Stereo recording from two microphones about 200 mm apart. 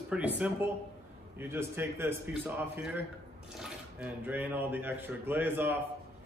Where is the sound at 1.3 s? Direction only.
10° right (ahead or behind).